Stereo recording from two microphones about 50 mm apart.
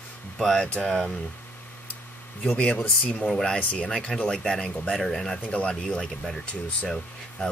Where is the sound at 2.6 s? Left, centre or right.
Left.